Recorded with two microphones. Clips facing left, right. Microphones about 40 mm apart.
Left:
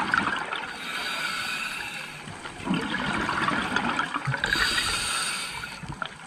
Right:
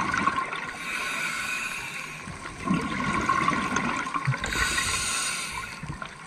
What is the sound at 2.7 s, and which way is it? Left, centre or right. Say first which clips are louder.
Toilet flush: left 1 dB; left.